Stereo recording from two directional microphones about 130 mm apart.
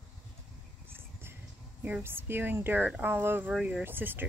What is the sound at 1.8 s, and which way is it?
Speech, 15° right (ahead or behind).